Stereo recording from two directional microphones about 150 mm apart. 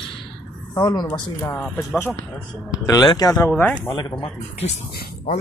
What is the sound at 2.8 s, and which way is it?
Speech, 25° left (ahead or behind).